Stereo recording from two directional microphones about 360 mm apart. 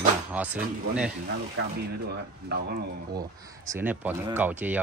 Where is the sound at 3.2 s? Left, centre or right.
Centre.